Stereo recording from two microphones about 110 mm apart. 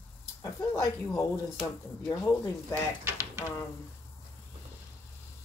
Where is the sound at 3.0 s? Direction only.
25° right (ahead or behind).